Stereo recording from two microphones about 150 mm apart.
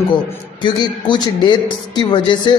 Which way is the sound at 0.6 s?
30° left (ahead or behind).